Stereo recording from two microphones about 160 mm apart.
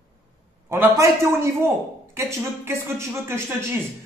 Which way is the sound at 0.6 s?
15° right (ahead or behind).